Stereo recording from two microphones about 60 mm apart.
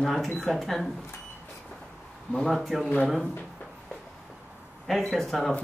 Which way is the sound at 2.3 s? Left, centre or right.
Centre.